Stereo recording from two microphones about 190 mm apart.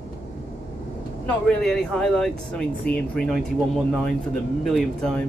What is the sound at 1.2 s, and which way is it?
Speech, 5° left (ahead or behind).